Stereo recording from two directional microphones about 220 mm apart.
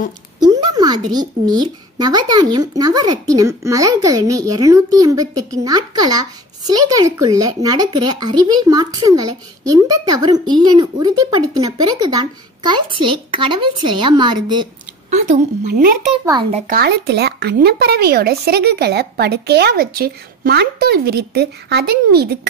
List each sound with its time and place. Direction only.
0.4 s speech: 20° right (ahead or behind)
15.0 s a woman's voice: 35° right (ahead or behind)